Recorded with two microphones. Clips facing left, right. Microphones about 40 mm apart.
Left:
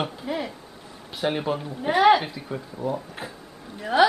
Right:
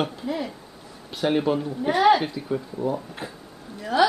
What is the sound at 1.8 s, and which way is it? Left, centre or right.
Speech, centre.